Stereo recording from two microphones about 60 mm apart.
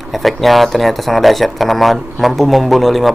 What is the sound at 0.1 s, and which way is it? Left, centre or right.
A man's voice, centre.